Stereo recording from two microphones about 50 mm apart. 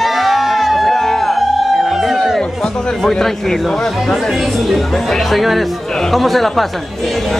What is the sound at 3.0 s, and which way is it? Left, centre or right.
Speech, centre.